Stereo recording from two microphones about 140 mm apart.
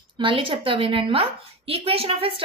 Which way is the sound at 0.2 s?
40° right (ahead or behind).